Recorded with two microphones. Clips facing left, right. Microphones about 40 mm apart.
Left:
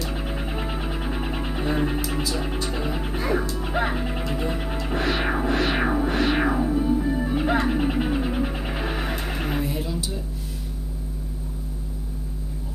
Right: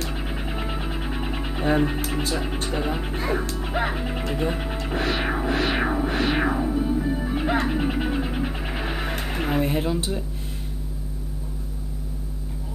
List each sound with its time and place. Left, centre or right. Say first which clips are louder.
0.1 s music: left 1 dB; centre
2.3 s speech: right 1 dB; centre
2.7 s music: right 1 dB; centre
3.5 s speech: left 1 dB; centre
4.8 s music: left 1 dB; centre
7.6 s a sound: left 1 dB; centre
9.6 s speech: right 4 dB; right